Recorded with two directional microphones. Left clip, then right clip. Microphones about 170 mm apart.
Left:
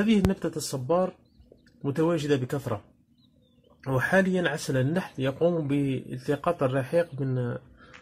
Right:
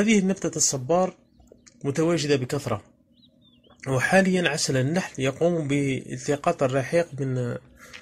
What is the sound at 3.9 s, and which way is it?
Speech, 10° right (ahead or behind).